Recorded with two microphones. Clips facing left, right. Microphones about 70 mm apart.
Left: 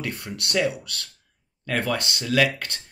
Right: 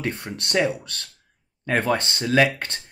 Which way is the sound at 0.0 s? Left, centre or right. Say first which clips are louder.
Right 3 dB; right.